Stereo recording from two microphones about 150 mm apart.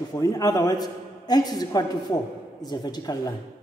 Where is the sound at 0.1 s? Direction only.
25° left (ahead or behind).